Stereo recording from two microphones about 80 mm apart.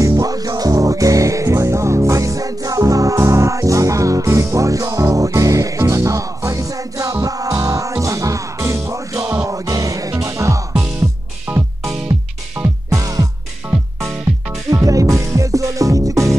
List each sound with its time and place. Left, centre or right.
0.2 s music: right
9.7 s music: right
11.5 s music: centre
12.6 s music: right
12.9 s music: right
14.7 s music: right